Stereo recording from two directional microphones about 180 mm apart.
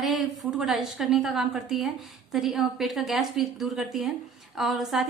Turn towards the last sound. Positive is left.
turn(degrees=0)  # may be behind; listen again after turning